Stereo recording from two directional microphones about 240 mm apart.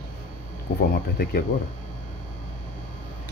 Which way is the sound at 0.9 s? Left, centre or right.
Left.